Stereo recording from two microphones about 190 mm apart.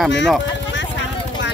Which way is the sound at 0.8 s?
70° left (ahead or behind).